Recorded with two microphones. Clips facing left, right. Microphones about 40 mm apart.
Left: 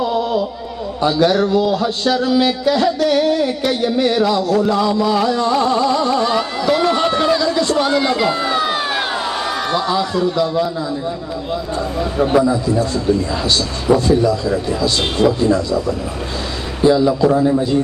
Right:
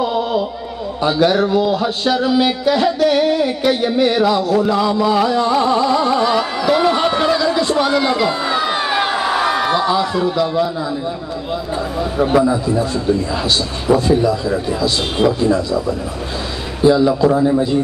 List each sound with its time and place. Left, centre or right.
0.0 s a sound: centre
1.0 s a man's voice: centre
2.6 s music: centre
6.2 s speech: centre
7.4 s a sound: centre
7.8 s crowd: centre
12.0 s a man's voice: centre
13.9 s music: centre
16.8 s music: centre